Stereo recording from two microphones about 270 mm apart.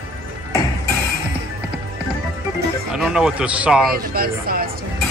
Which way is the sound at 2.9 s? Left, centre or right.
Centre.